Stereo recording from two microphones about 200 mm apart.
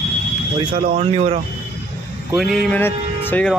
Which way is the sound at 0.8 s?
30° right (ahead or behind).